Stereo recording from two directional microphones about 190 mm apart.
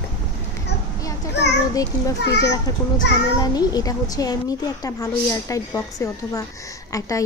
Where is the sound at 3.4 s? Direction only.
20° left (ahead or behind).